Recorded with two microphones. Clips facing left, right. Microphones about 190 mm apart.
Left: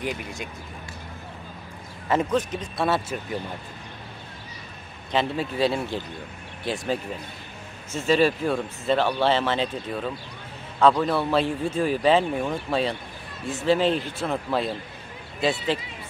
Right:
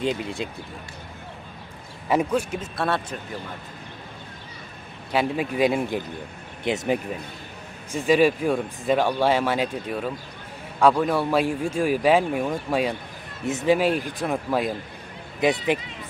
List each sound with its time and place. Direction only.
0.0 s speech: 25° right (ahead or behind)
2.0 s speech: 10° right (ahead or behind)
5.1 s speech: 10° right (ahead or behind)
7.9 s speech: 15° right (ahead or behind)
13.5 s speech: 20° right (ahead or behind)